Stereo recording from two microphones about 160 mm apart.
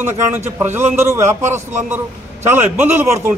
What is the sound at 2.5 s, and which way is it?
Speech, 10° right (ahead or behind).